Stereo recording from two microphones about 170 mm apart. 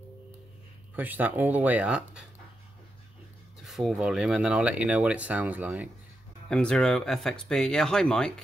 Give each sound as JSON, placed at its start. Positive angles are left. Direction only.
{"t": 0.9, "sound": "speech", "side_deg": -10}
{"t": 3.6, "sound": "speech", "side_deg": 0}
{"t": 6.5, "sound": "speech", "side_deg": 5}